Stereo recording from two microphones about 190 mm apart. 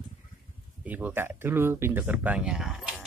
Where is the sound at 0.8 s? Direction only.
10° right (ahead or behind).